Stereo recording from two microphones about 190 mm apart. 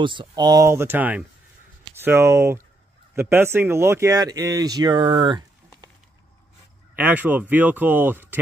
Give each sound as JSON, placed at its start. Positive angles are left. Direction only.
{"t": 0.0, "sound": "speech", "side_deg": -25}
{"t": 7.0, "sound": "speech", "side_deg": -10}